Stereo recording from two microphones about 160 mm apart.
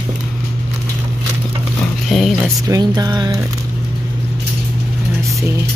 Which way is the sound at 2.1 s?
Centre (ahead or behind).